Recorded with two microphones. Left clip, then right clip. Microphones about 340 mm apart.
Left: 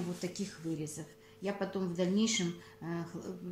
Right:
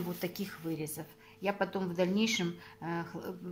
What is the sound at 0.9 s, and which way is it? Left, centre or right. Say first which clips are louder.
Speech: right 2 dB; right.